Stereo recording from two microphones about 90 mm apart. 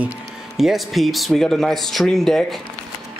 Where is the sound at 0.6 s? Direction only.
Centre (ahead or behind).